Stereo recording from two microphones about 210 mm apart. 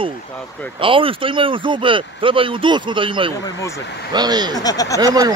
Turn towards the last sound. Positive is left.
turn(degrees=-15)  # may be behind; listen again after turning